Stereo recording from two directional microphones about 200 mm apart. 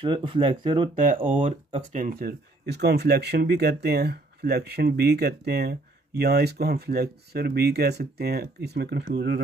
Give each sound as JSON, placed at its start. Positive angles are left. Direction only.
{"t": 0.0, "sound": "speech", "side_deg": -25}